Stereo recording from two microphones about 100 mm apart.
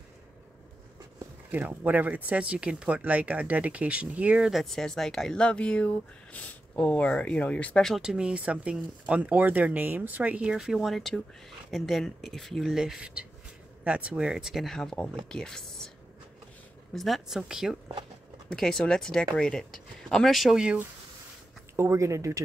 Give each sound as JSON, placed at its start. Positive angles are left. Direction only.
{"t": 1.5, "sound": "speech", "side_deg": -15}
{"t": 4.5, "sound": "speech", "side_deg": 0}
{"t": 8.0, "sound": "speech", "side_deg": -10}
{"t": 16.9, "sound": "speech", "side_deg": 0}
{"t": 18.5, "sound": "speech", "side_deg": 5}
{"t": 21.7, "sound": "speech", "side_deg": -30}